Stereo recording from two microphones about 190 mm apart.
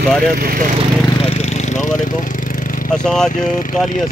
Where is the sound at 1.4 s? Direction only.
40° left (ahead or behind).